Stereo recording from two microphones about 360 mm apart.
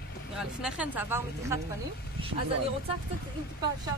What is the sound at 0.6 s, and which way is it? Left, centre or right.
A woman's voice, centre.